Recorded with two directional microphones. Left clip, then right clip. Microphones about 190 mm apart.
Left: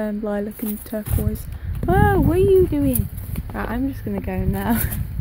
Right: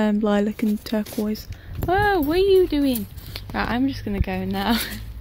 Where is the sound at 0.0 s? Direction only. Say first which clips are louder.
Right 4 dB; 15° right (ahead or behind).